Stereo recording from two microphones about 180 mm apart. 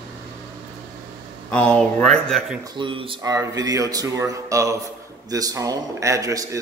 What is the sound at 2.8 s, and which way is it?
A man's voice, 30° right (ahead or behind).